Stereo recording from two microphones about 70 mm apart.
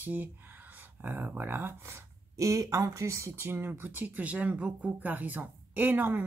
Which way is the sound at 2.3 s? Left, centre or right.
Right.